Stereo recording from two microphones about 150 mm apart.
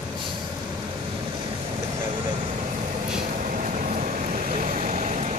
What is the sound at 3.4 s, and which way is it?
Vehicle, 55° right (ahead or behind).